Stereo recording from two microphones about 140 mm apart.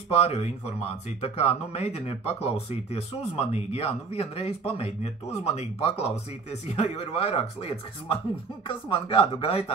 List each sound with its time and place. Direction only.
0.1 s speech: 45° left (ahead or behind)